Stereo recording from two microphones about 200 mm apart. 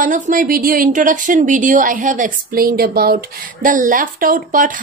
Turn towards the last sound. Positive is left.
turn(degrees=-45)  # may be behind; listen again after turning